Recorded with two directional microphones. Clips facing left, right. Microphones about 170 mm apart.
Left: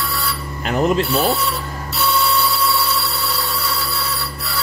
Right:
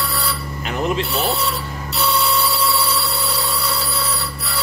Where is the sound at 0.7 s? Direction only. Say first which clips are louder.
Left 5 dB; 40° left (ahead or behind).